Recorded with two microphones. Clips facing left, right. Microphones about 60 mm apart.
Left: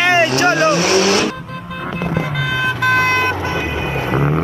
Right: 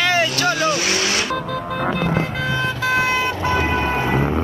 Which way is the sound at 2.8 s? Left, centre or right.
Centre.